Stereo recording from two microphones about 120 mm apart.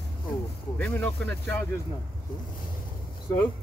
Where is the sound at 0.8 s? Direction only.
15° left (ahead or behind).